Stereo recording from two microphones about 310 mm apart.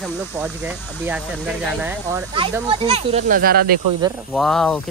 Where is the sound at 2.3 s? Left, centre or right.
Centre.